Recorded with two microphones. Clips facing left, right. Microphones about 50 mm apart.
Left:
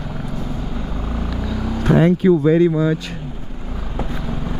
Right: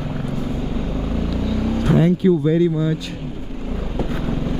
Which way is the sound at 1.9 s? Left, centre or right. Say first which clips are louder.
Left 3 dB; left.